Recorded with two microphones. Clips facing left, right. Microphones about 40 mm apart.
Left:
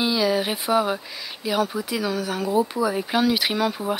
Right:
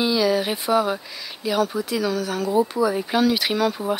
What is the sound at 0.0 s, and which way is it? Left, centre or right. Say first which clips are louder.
Speech: right 1 dB; centre.